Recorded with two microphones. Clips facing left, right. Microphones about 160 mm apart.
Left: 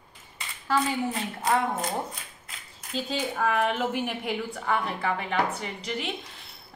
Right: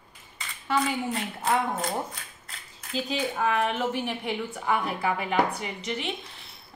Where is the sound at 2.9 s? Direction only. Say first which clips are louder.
Right 1 dB; centre (ahead or behind).